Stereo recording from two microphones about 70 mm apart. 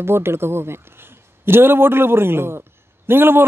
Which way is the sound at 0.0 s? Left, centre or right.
Right.